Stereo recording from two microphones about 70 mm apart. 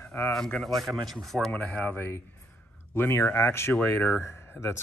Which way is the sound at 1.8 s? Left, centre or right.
Left.